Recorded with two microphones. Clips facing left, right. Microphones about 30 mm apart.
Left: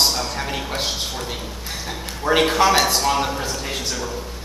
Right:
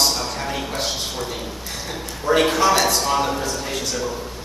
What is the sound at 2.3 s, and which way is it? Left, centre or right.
Speech, left.